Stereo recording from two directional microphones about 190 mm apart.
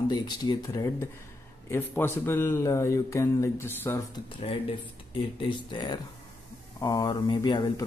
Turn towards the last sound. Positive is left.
turn(degrees=20)  # may be behind; listen again after turning